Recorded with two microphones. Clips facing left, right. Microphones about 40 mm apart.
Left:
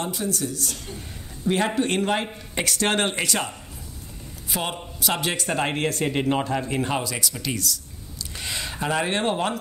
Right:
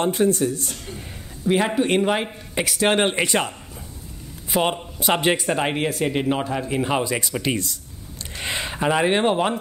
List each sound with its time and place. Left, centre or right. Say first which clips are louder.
0.0 s speech: right 8 dB; right
0.8 s a man's voice: right 2 dB; centre
5.5 s a man's voice: right 2 dB; centre
7.0 s speech: right 5 dB; right